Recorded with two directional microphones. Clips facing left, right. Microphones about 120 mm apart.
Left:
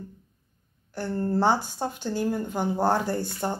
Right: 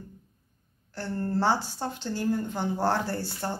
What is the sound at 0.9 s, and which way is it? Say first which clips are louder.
Speech: left 3 dB; 15° left (ahead or behind).